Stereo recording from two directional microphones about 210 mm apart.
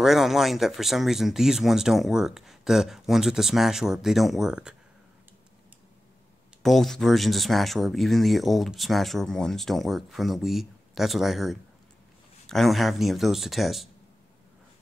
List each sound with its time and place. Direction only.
0.0 s speech: centre (ahead or behind)
6.6 s speech: centre (ahead or behind)